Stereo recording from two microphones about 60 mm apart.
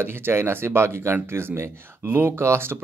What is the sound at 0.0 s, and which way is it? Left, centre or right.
Speech, right.